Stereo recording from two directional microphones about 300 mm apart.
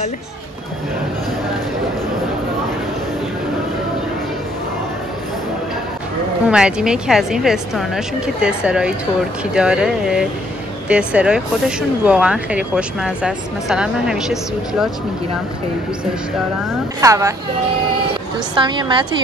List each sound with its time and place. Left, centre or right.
6.5 s speech: centre
17.0 s a woman's voice: centre
18.6 s a woman's voice: centre